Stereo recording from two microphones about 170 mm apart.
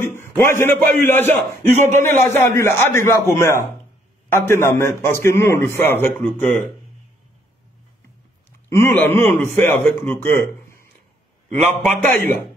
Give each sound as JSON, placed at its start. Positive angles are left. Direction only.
{"t": 0.0, "sound": "a sound", "side_deg": 15}
{"t": 0.4, "sound": "speech", "side_deg": 15}
{"t": 1.8, "sound": "a man's voice", "side_deg": -45}
{"t": 2.0, "sound": "speech", "side_deg": 15}
{"t": 8.7, "sound": "speech", "side_deg": 10}
{"t": 11.5, "sound": "speech", "side_deg": 10}